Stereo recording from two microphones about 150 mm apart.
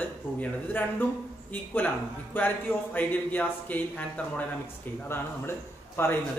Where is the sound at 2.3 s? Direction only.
10° left (ahead or behind).